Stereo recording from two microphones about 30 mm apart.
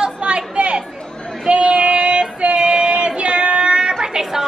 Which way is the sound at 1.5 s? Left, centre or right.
Right.